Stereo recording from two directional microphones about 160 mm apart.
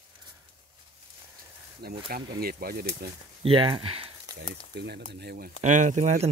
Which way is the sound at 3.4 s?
35° right (ahead or behind).